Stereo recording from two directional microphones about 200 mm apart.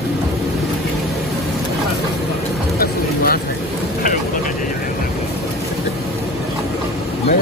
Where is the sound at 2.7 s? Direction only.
50° left (ahead or behind).